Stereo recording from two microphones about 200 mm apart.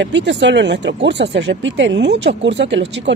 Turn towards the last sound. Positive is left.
turn(degrees=-60)  # may be behind; listen again after turning